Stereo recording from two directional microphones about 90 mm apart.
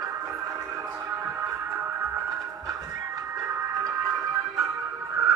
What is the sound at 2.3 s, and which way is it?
Music, 40° right (ahead or behind).